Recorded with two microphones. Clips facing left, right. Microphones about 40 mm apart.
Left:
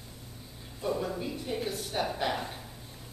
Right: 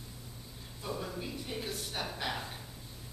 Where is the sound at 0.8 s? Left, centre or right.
Centre.